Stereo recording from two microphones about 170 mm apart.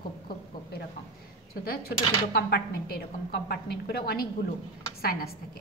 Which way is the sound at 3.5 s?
65° left (ahead or behind).